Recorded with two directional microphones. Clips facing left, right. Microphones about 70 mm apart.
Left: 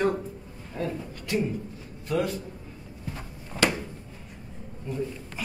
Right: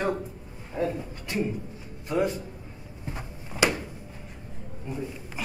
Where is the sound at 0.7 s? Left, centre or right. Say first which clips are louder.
Right 3 dB; centre.